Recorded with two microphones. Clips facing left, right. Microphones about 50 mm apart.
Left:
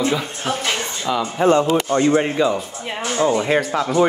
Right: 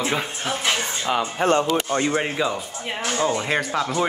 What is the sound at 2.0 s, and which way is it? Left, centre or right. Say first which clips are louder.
Speech: left 6 dB; centre.